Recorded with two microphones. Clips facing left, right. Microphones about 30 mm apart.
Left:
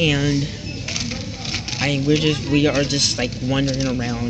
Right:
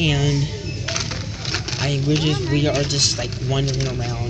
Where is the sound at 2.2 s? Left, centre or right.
Left.